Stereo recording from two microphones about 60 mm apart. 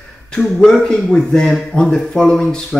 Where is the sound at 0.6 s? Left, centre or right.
Centre.